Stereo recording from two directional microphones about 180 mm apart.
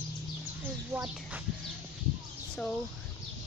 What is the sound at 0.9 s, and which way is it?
Speech, 15° right (ahead or behind).